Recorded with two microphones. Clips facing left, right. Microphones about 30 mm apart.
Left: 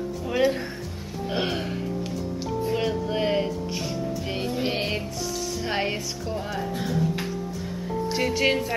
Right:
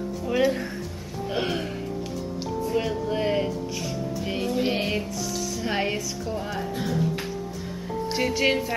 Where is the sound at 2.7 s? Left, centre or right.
Centre.